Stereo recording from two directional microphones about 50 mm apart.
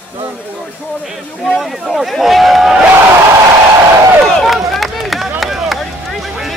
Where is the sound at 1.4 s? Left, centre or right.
Centre.